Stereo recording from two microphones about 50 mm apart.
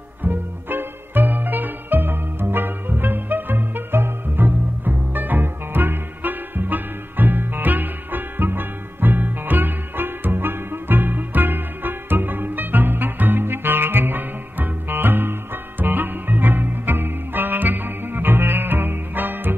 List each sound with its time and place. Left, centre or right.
0.2 s music: right